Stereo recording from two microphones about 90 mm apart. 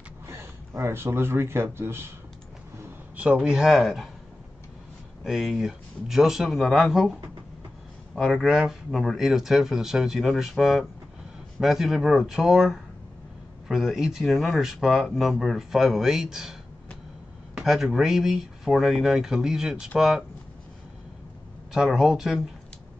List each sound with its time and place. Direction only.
0.3 s speech: 30° right (ahead or behind)
3.2 s speech: 10° right (ahead or behind)
5.2 s speech: centre (ahead or behind)
17.6 s speech: 5° right (ahead or behind)
21.7 s speech: 5° right (ahead or behind)